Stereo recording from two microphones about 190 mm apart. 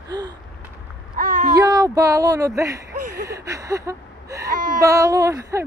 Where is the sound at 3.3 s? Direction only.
15° right (ahead or behind).